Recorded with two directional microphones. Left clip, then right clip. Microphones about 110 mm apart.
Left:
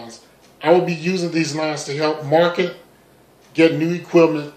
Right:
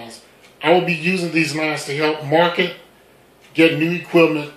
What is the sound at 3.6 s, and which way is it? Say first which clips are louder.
Speech: even; 15° left (ahead or behind).